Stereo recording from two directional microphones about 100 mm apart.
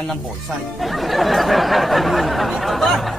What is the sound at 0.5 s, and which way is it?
Speech, centre (ahead or behind).